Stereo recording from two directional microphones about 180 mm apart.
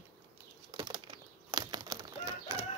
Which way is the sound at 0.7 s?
25° right (ahead or behind).